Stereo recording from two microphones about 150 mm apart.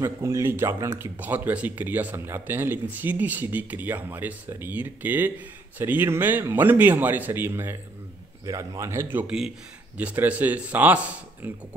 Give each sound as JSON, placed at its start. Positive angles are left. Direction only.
{"t": 0.0, "sound": "a man's voice", "side_deg": -20}